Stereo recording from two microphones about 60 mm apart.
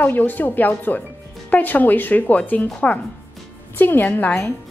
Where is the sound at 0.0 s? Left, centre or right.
Left.